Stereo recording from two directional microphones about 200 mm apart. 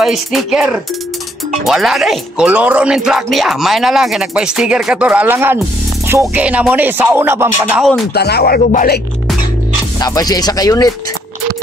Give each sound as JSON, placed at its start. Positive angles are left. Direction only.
{"t": 0.0, "sound": "speech", "side_deg": 0}
{"t": 6.0, "sound": "music", "side_deg": -10}
{"t": 8.1, "sound": "speech", "side_deg": 55}
{"t": 9.9, "sound": "speech", "side_deg": 20}